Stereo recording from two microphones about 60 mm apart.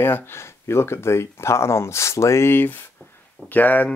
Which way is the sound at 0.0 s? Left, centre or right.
Left.